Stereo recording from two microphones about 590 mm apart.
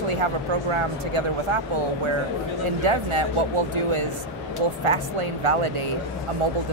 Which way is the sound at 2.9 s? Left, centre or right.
Right.